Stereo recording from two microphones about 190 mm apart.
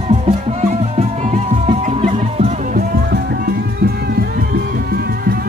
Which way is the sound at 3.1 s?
55° right (ahead or behind).